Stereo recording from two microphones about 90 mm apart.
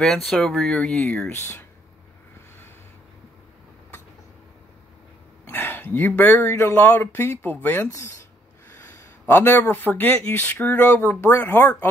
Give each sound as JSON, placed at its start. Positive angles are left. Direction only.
{"t": 0.0, "sound": "speech", "side_deg": 5}
{"t": 0.7, "sound": "speech", "side_deg": 15}
{"t": 5.5, "sound": "a sound", "side_deg": 20}
{"t": 6.4, "sound": "speech", "side_deg": 30}
{"t": 8.7, "sound": "a sound", "side_deg": 30}
{"t": 9.3, "sound": "speech", "side_deg": 25}